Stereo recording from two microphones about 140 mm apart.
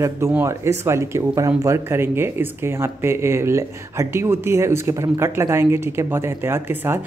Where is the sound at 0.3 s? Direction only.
20° right (ahead or behind).